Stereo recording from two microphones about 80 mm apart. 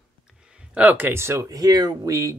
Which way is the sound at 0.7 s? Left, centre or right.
Right.